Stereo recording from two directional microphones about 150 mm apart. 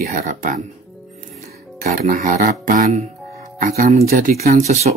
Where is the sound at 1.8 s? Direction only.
65° right (ahead or behind).